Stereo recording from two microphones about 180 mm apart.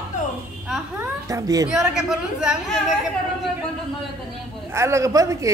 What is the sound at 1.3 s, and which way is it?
Speech, 20° right (ahead or behind).